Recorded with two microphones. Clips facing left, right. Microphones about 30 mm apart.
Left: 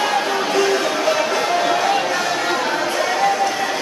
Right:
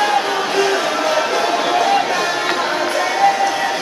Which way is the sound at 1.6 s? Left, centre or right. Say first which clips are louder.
Right 2 dB; centre.